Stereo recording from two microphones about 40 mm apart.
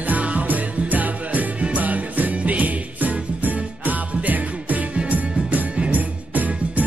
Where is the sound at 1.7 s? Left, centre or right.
Right.